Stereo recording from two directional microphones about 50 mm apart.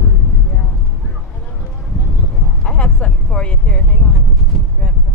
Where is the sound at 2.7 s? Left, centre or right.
Centre.